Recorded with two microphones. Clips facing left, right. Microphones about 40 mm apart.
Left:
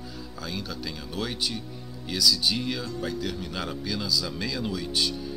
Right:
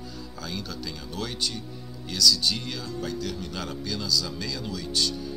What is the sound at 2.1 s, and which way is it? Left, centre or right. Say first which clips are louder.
Speech: right 1 dB; centre.